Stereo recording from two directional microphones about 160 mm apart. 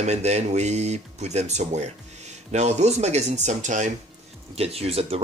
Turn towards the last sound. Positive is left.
turn(degrees=-40)  # may be behind; listen again after turning